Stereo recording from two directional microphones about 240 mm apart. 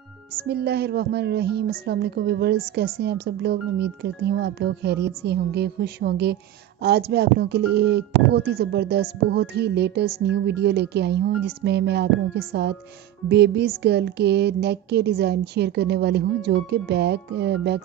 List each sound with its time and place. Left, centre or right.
0.5 s speech: right